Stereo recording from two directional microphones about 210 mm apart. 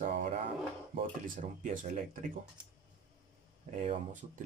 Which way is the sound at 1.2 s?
40° right (ahead or behind).